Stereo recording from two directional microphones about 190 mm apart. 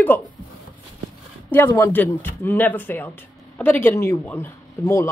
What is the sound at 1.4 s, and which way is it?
Speech, 10° left (ahead or behind).